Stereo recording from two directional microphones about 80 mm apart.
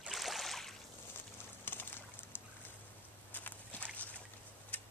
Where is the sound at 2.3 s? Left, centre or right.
Left.